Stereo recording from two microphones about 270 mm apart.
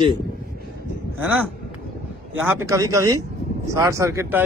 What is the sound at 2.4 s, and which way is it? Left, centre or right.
Speech, centre.